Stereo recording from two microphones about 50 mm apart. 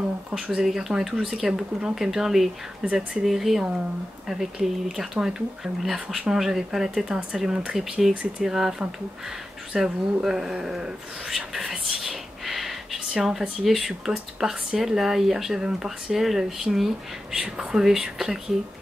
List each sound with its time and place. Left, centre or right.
0.3 s speech: centre
2.8 s speech: right
3.3 s speech: centre
8.1 s speech: right
8.5 s speech: centre